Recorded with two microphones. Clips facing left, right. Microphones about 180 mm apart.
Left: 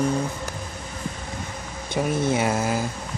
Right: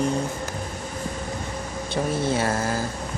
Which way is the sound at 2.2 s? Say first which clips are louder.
Left 1 dB; 15° left (ahead or behind).